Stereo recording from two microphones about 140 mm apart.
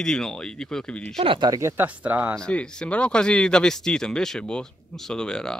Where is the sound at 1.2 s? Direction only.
40° right (ahead or behind).